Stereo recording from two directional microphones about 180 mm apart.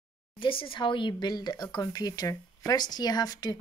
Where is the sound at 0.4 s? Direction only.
30° left (ahead or behind).